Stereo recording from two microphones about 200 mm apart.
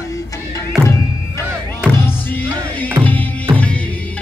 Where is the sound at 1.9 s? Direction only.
10° left (ahead or behind).